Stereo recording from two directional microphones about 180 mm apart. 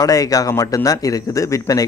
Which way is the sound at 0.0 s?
20° left (ahead or behind).